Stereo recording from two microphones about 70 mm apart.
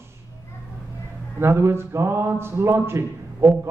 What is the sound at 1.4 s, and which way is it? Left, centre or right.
A man's voice, right.